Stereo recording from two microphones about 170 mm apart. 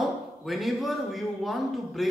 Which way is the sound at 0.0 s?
Centre (ahead or behind).